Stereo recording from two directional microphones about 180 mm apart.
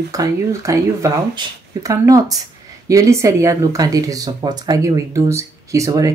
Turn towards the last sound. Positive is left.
turn(degrees=-20)  # may be behind; listen again after turning